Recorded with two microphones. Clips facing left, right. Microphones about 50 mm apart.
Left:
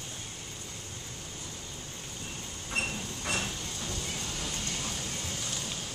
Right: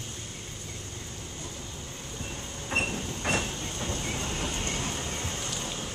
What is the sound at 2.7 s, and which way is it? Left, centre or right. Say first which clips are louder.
Train: right 4 dB; right.